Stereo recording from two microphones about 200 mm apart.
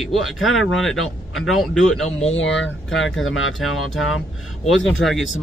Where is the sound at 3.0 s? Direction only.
Centre (ahead or behind).